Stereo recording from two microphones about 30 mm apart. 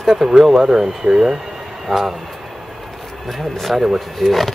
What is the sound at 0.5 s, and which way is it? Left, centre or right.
Speech, centre.